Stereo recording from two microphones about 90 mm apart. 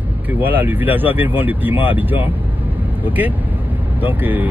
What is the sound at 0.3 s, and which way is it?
Speech, 20° right (ahead or behind).